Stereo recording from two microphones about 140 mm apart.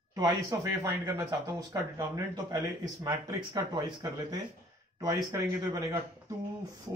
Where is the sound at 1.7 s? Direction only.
25° right (ahead or behind).